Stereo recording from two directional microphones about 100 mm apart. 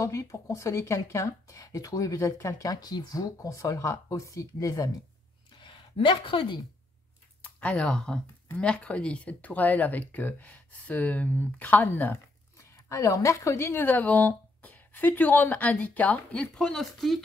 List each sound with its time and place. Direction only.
0.0 s speech: 30° left (ahead or behind)
5.6 s speech: 55° left (ahead or behind)
7.4 s speech: 15° left (ahead or behind)
12.5 s speech: 30° left (ahead or behind); by 17.2 s centre (ahead or behind)